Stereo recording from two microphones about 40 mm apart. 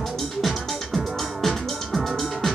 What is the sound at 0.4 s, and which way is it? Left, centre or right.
Music, centre.